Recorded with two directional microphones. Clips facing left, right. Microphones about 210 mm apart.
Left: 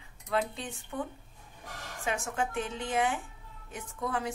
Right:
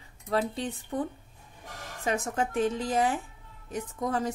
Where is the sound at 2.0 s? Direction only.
35° right (ahead or behind).